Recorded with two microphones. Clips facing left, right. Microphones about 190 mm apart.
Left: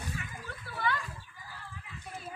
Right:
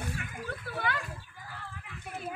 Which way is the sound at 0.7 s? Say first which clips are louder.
Left 1 dB; 65° right (ahead or behind).